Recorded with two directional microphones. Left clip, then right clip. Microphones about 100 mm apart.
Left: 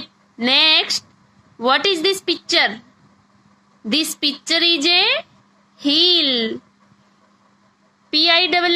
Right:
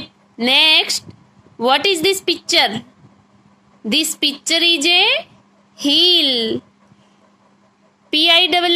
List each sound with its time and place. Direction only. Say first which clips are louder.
0.0 s a woman's voice: right 2 dB; 35° right (ahead or behind)
3.8 s a woman's voice: right 2 dB; 35° right (ahead or behind)
8.1 s a woman's voice: right 2 dB; 35° right (ahead or behind)